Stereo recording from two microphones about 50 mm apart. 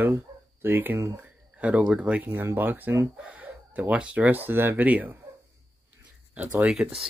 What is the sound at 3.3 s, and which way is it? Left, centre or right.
Chicken, right.